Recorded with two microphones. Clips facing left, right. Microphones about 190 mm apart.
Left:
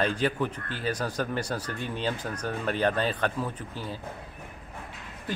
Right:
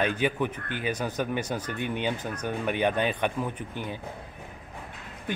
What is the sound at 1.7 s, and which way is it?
Speech, 60° right (ahead or behind).